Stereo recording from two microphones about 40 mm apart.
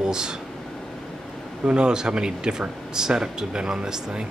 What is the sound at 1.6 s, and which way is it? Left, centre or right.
Speech, right.